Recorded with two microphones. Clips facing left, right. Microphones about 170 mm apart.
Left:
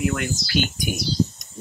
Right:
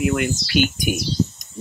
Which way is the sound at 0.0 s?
15° right (ahead or behind).